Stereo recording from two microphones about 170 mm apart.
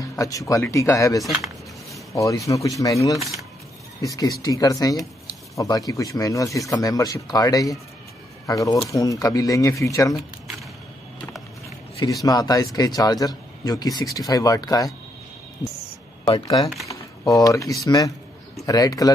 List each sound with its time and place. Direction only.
0.1 s speech: 20° left (ahead or behind)
1.2 s speech: centre (ahead or behind)
2.1 s speech: 20° left (ahead or behind)
3.2 s speech: centre (ahead or behind)
4.0 s speech: 20° left (ahead or behind)
12.0 s speech: 20° left (ahead or behind)
16.3 s speech: 25° left (ahead or behind)
16.9 s a sound: 20° left (ahead or behind)
17.8 s speech: 20° left (ahead or behind)